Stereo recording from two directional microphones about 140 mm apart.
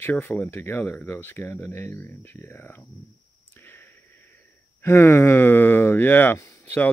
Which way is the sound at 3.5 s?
15° left (ahead or behind).